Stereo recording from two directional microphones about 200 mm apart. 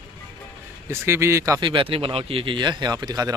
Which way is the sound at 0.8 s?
15° right (ahead or behind).